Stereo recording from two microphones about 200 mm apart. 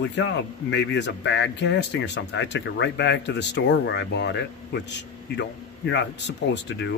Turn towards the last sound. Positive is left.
turn(degrees=65)  # may be behind; listen again after turning